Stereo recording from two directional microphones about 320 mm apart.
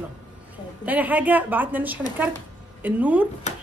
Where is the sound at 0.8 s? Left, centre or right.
Centre.